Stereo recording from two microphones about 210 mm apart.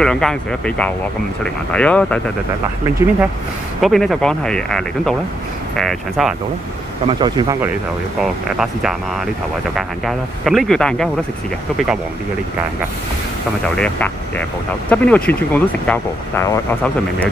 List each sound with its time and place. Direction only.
0.0 s speech: 5° left (ahead or behind)
3.8 s speech: centre (ahead or behind)
7.1 s speech: 20° right (ahead or behind)
8.2 s speech: centre (ahead or behind)
13.7 s speech: 5° left (ahead or behind)